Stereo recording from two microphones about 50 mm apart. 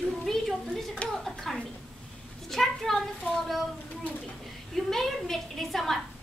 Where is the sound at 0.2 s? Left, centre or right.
Centre.